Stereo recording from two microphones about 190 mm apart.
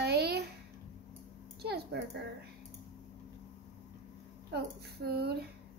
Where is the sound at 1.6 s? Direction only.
60° right (ahead or behind).